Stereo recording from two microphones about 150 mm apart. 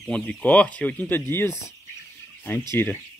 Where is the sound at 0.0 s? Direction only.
5° left (ahead or behind).